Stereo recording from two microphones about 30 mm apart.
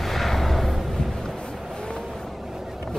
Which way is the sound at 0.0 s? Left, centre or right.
Centre.